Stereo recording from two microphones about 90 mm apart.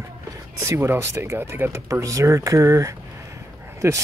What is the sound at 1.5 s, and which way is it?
Speech, 25° right (ahead or behind).